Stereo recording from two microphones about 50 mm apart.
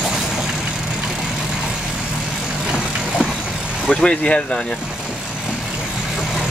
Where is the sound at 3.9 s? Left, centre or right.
Centre.